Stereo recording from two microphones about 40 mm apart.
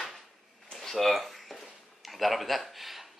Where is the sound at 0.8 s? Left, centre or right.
Centre.